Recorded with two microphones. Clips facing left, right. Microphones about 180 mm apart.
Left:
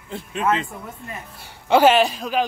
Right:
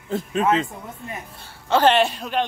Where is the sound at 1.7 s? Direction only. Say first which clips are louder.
Left 2 dB; 10° left (ahead or behind).